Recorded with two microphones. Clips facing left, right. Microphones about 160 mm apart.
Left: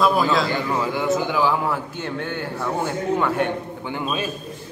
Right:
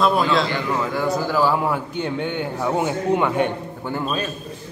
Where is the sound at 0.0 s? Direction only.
Centre (ahead or behind).